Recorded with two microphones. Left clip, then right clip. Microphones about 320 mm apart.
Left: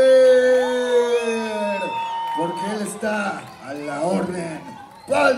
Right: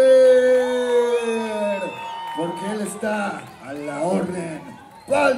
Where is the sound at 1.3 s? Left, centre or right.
Left.